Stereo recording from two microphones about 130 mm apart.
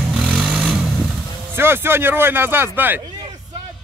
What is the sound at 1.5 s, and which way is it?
Speech, 15° right (ahead or behind).